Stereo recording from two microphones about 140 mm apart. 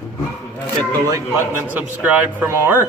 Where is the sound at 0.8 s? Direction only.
25° right (ahead or behind).